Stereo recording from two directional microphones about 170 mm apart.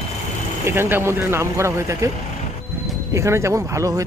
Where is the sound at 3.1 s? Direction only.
15° right (ahead or behind).